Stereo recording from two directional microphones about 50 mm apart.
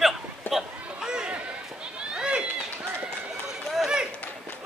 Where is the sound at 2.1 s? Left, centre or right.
Centre.